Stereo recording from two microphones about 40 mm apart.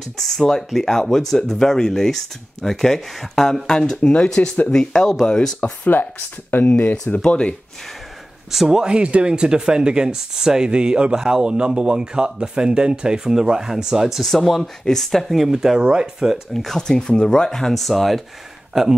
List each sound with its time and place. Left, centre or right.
0.0 s speech: centre
4.0 s speech: left
4.6 s speech: centre
5.9 s speech: left
7.2 s speech: left
8.5 s speech: centre
8.7 s speech: right
14.2 s speech: centre
15.8 s speech: right
16.5 s speech: centre
16.8 s speech: centre
18.7 s speech: centre